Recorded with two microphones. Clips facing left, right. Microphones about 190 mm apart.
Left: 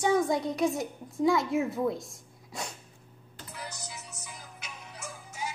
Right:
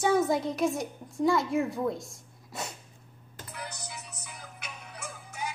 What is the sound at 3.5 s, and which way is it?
Music, 60° right (ahead or behind).